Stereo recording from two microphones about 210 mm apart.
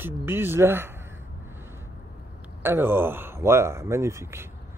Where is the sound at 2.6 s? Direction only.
10° right (ahead or behind).